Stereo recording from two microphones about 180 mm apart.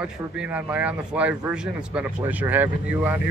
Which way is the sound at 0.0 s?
5° right (ahead or behind).